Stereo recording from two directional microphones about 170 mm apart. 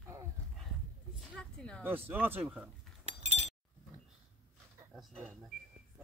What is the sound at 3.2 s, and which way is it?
Chink, 40° right (ahead or behind).